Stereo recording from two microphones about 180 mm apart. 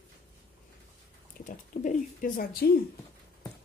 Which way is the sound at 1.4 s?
50° left (ahead or behind).